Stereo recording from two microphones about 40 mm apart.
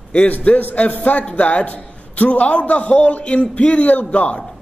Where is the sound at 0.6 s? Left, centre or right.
Left.